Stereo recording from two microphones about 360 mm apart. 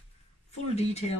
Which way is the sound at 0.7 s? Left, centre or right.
Centre.